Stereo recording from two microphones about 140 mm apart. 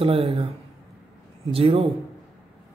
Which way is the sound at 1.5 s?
45° right (ahead or behind).